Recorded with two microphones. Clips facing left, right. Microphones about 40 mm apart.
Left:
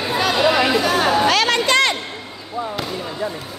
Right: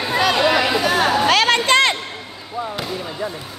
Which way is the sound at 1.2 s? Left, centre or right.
Right.